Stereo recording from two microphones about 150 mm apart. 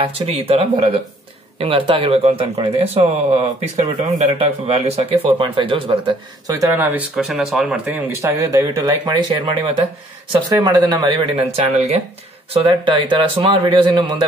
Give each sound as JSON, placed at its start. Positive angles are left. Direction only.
{"t": 0.0, "sound": "speech", "side_deg": -40}
{"t": 6.5, "sound": "speech", "side_deg": -15}
{"t": 8.2, "sound": "speech", "side_deg": -20}
{"t": 11.5, "sound": "speech", "side_deg": -45}